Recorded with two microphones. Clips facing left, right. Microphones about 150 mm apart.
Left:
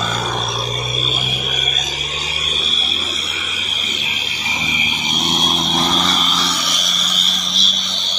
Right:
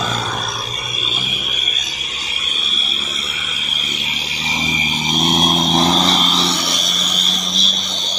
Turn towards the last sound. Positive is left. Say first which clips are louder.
# right 3 dB
turn(degrees=-25)  # may be behind; listen again after turning